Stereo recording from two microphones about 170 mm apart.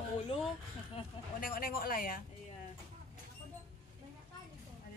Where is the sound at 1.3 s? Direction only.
55° left (ahead or behind).